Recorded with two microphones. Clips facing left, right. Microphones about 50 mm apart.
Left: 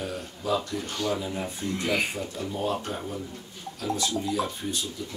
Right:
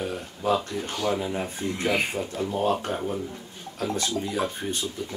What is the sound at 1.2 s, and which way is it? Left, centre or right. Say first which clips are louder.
A man's voice: right 3 dB; right.